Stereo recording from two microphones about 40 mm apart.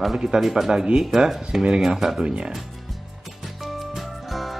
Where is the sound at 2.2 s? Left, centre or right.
Right.